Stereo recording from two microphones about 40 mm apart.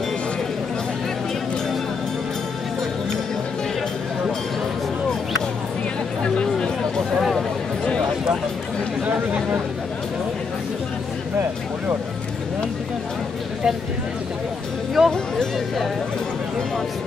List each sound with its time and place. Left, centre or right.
6.2 s a sound: left
9.0 s chatter: right
15.0 s music: centre